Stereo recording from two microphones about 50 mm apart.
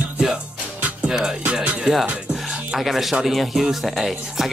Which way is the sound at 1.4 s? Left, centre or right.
Right.